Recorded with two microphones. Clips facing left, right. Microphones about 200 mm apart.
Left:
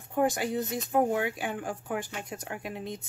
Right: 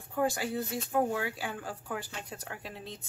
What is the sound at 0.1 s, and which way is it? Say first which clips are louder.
Speech: left 3 dB; 20° left (ahead or behind).